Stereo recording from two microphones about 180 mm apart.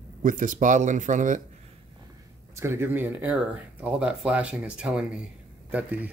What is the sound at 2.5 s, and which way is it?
Speech, 15° right (ahead or behind).